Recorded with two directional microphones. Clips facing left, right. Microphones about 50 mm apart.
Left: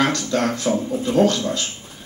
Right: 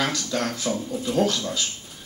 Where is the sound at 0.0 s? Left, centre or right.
Centre.